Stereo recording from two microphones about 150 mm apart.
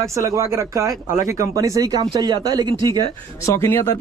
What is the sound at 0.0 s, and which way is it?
Speech, 20° right (ahead or behind).